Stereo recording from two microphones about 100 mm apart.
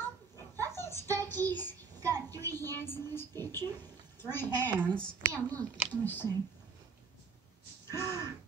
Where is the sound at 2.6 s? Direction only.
25° left (ahead or behind).